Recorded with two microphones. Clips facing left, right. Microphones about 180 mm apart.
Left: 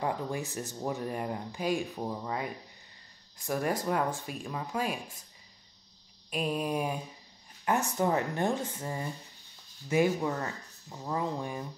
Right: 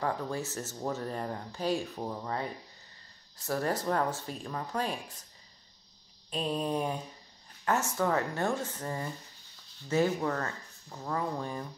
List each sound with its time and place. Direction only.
0.0 s speech: 15° left (ahead or behind)
6.3 s speech: 10° left (ahead or behind)